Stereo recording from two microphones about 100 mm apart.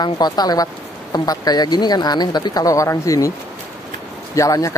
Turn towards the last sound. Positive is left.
turn(degrees=35)  # may be behind; listen again after turning